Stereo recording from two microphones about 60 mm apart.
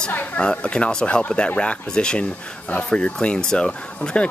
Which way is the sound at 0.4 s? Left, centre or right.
Centre.